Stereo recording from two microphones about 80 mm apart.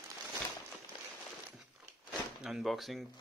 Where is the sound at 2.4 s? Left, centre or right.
Centre.